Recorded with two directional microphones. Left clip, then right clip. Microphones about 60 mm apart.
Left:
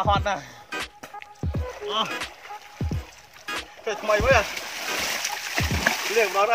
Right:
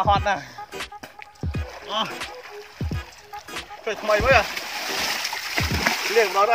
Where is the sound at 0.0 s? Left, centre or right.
Centre.